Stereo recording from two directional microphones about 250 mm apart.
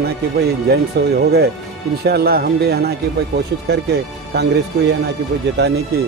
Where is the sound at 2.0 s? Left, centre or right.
Right.